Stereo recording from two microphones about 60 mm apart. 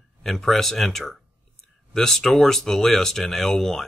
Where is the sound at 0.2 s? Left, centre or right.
Centre.